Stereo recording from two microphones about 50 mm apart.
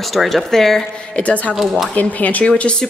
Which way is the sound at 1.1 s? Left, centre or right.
Left.